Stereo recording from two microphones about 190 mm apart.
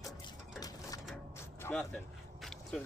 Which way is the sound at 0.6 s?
20° left (ahead or behind).